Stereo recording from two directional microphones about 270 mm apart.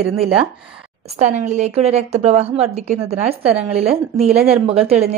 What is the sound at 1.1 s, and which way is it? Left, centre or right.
A woman's voice, right.